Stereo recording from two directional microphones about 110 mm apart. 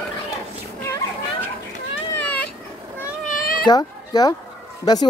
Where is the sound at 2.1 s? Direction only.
15° left (ahead or behind).